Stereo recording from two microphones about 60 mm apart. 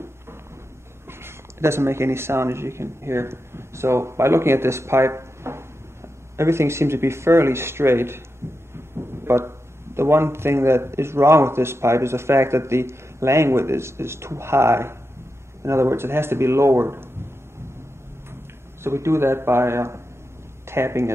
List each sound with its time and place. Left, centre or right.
1.0 s a man's voice: right
8.4 s heart murmur: right
8.7 s a sound: right
9.9 s a man's voice: right
18.8 s a man's voice: right